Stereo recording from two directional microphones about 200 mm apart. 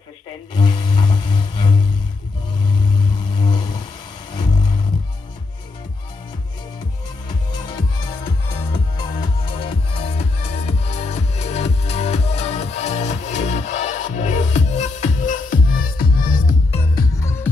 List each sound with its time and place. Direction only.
0.6 s music: 25° left (ahead or behind)
3.3 s a sound: 25° left (ahead or behind)
4.3 s music: 25° left (ahead or behind)
7.6 s music: 20° left (ahead or behind); by 16.5 s 45° left (ahead or behind)
17.2 s music: 15° left (ahead or behind)